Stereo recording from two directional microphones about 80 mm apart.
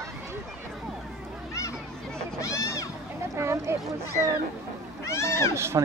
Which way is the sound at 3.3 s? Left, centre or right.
Right.